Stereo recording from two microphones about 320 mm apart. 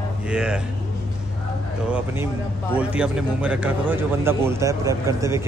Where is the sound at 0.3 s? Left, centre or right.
Centre.